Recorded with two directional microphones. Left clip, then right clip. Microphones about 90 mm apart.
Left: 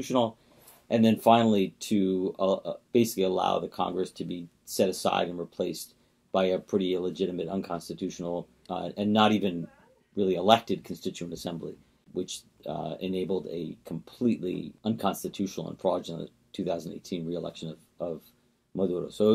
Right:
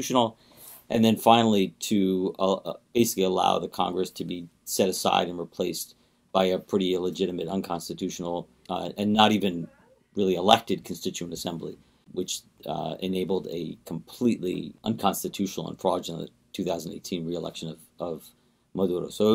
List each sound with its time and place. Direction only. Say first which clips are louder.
0.0 s speech: right 3 dB; 30° right (ahead or behind)